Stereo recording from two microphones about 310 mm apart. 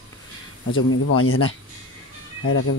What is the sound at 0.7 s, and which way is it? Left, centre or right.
Speech, left.